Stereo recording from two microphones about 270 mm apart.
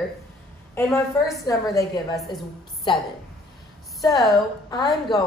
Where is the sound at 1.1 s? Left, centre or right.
Centre.